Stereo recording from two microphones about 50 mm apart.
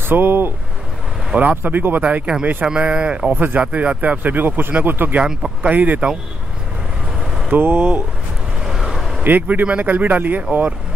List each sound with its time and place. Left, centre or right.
0.1 s speech: right
1.3 s speech: right
1.6 s speech: right
2.6 s speech: right
3.3 s speech: right
3.6 s speech: right
5.2 s speech: centre
5.6 s speech: right
7.4 s speech: right
8.6 s vehicle: centre
9.2 s speech: right